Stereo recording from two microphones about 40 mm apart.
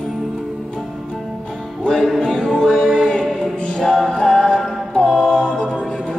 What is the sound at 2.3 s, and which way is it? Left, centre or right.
Music, centre.